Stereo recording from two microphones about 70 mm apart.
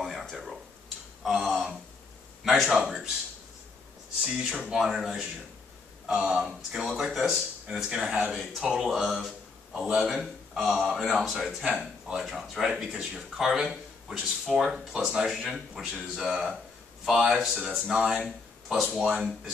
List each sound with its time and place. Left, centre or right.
0.0 s a sound: centre
2.4 s a man's voice: centre
4.2 s speech: centre
6.0 s a man's voice: centre
9.8 s speech: centre
10.0 s speech: centre
17.9 s speech: centre
18.2 s speech: centre